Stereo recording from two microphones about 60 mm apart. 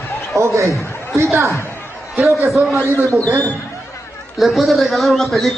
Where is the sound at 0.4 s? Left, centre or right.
Right.